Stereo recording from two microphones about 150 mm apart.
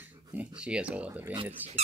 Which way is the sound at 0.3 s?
10° right (ahead or behind).